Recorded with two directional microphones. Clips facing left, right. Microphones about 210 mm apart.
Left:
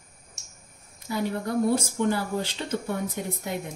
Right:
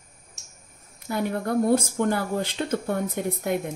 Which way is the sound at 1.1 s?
55° right (ahead or behind).